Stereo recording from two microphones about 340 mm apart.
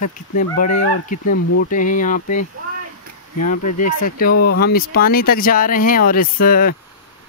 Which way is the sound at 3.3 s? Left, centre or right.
Left.